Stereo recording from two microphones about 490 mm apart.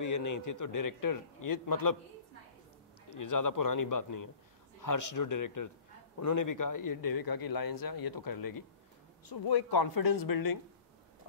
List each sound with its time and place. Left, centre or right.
0.0 s a man's voice: left
3.2 s a man's voice: left